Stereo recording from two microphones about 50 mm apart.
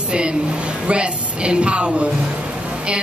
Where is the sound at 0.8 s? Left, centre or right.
Right.